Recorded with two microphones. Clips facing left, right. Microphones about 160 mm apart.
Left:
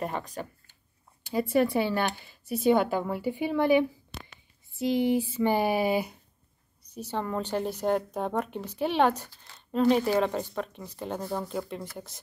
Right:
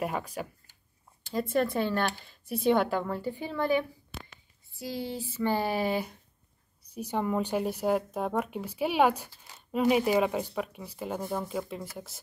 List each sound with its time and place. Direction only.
0.0 s speech: 10° right (ahead or behind)
1.3 s speech: 10° left (ahead or behind)
6.9 s a woman's voice: 10° right (ahead or behind)